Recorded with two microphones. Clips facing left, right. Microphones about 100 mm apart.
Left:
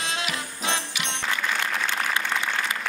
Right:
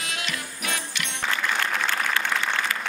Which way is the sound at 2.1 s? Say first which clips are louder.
Right 1 dB; 20° left (ahead or behind).